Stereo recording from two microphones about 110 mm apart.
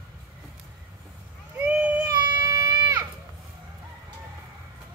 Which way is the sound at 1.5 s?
15° right (ahead or behind).